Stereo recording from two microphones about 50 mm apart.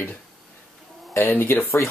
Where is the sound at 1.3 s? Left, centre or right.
Left.